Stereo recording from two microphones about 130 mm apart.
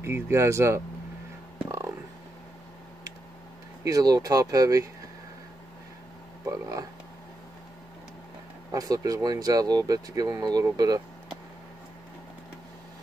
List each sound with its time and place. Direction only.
0.0 s speech: 20° right (ahead or behind)
1.7 s a sound: 20° right (ahead or behind)
3.8 s speech: 25° right (ahead or behind)
6.4 s speech: 25° right (ahead or behind)
8.7 s speech: 25° right (ahead or behind)